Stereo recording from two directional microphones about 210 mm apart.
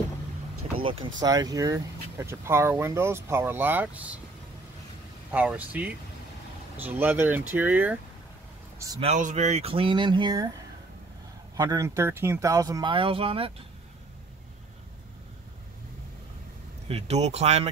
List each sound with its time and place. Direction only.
0.8 s speech: 25° right (ahead or behind); by 4.2 s 5° right (ahead or behind)
5.3 s speech: 5° right (ahead or behind)
9.0 s speech: 35° right (ahead or behind); by 10.5 s 20° right (ahead or behind)
11.5 s speech: 20° right (ahead or behind)
16.8 s speech: 30° right (ahead or behind)